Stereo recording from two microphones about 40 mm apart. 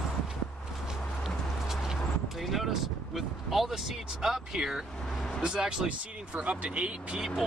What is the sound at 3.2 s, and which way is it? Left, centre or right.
Speech, centre.